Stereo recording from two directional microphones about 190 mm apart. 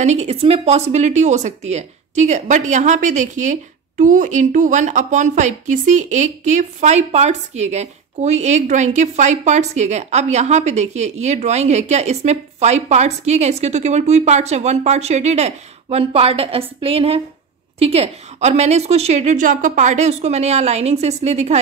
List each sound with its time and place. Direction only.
0.0 s speech: 35° right (ahead or behind)